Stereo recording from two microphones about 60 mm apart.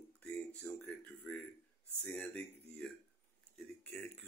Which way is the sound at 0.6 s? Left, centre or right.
Centre.